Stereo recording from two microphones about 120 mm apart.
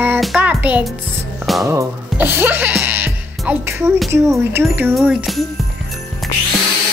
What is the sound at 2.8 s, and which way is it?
Music, 15° right (ahead or behind).